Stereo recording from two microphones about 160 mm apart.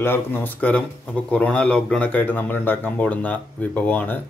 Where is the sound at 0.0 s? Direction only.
15° left (ahead or behind).